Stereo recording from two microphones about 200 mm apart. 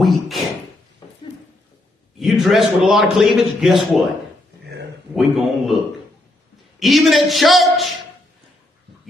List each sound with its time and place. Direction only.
0.0 s speech: centre (ahead or behind)
1.0 s a sound: 20° left (ahead or behind)
2.1 s a man's voice: centre (ahead or behind)
5.1 s a man's voice: centre (ahead or behind)
6.8 s a man's voice: centre (ahead or behind)